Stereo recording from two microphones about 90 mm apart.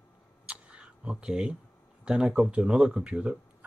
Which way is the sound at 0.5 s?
10° right (ahead or behind).